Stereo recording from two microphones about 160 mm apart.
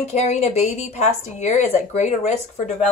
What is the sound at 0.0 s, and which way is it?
A woman's voice, 45° left (ahead or behind).